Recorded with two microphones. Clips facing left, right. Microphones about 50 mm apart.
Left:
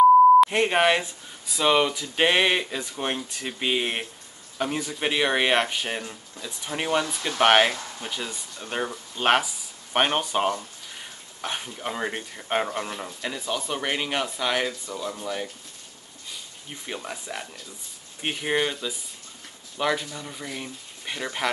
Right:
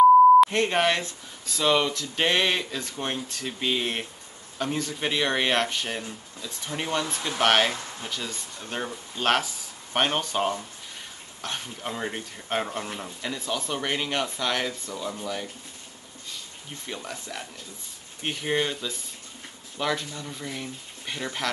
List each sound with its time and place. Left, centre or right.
0.5 s speech: centre
16.8 s speech: centre